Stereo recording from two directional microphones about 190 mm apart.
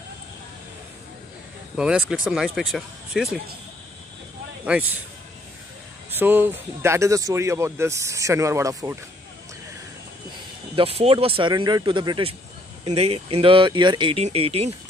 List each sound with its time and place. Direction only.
1.8 s speech: 5° right (ahead or behind)
4.6 s speech: 5° right (ahead or behind)
6.1 s speech: 10° right (ahead or behind)
10.8 s speech: 30° right (ahead or behind)